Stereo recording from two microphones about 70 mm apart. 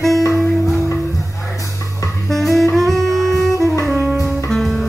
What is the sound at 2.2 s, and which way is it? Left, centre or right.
Saxophone, centre.